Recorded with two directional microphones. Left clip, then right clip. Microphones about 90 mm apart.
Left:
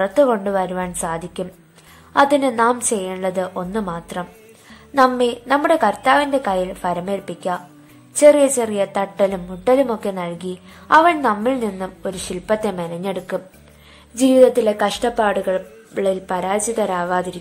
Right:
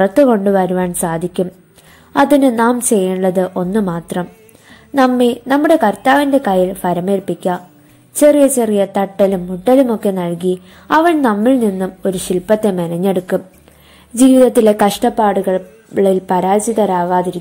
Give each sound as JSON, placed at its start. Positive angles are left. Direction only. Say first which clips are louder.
{"t": 0.0, "sound": "a woman's voice", "louder": "right 5 dB", "side_deg": -40}
{"t": 12.9, "sound": "a woman's voice", "louder": "right 8 dB", "side_deg": -60}
{"t": 14.1, "sound": "speech", "louder": "right 3 dB", "side_deg": -85}
{"t": 15.1, "sound": "a woman's voice", "louder": "right 4 dB", "side_deg": -35}
{"t": 17.0, "sound": "a woman's voice", "louder": "right 6 dB", "side_deg": -25}